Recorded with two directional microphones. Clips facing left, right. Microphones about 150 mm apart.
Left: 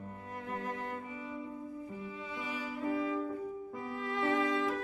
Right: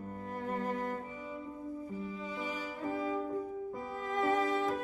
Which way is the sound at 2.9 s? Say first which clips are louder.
Left 2 dB; 40° right (ahead or behind).